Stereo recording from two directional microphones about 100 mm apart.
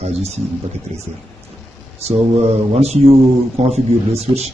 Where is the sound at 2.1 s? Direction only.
90° right.